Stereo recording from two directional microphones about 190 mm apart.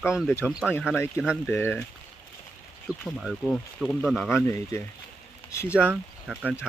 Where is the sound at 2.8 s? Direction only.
5° right (ahead or behind); by 4.8 s 15° left (ahead or behind).